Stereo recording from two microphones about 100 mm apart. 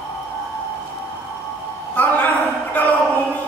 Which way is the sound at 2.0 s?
15° left (ahead or behind).